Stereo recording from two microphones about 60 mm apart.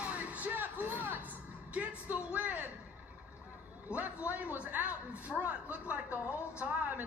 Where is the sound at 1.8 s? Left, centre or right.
Right.